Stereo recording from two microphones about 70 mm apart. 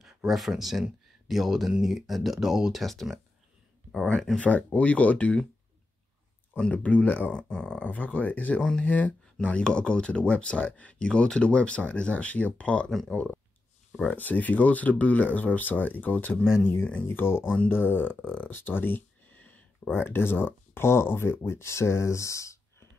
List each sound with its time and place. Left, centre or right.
0.0 s speech: centre
4.4 s speech: left
6.6 s speech: left
8.5 s speech: centre
8.8 s speech: left